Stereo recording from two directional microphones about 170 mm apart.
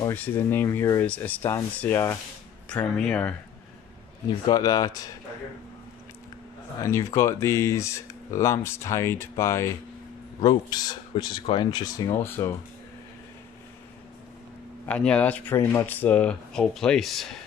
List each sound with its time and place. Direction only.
0.0 s speech: 10° left (ahead or behind)
4.5 s speech: 20° left (ahead or behind)
6.8 s speech: 15° left (ahead or behind)
14.9 s speech: 5° left (ahead or behind)